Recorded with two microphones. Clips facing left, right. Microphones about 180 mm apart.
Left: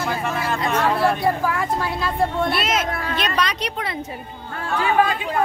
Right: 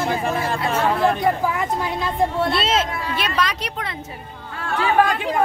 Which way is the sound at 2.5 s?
30° right (ahead or behind).